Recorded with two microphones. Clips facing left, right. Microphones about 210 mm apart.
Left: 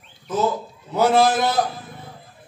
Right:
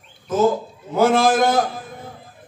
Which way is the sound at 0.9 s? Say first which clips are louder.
Right 1 dB; 45° right (ahead or behind).